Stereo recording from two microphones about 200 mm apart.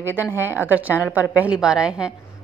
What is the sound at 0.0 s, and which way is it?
A woman's voice, 10° right (ahead or behind).